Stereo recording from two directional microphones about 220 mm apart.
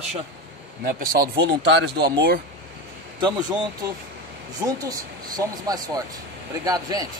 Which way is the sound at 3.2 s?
20° right (ahead or behind).